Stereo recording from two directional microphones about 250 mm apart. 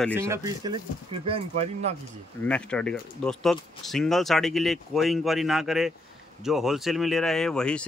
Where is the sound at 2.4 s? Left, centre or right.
Centre.